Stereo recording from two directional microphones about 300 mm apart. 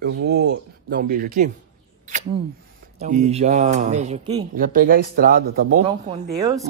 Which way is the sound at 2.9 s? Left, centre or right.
Right.